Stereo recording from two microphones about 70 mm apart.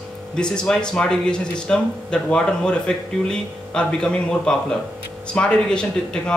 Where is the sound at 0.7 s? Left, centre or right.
Centre.